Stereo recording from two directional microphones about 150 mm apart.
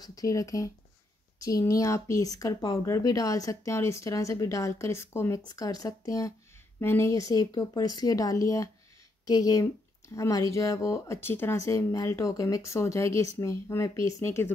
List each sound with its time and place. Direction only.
0.0 s speech: 25° left (ahead or behind)